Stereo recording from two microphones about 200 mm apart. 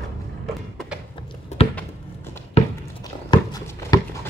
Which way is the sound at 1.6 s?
30° left (ahead or behind).